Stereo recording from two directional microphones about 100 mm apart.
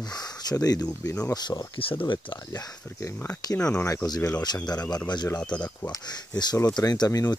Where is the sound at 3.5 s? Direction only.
10° left (ahead or behind).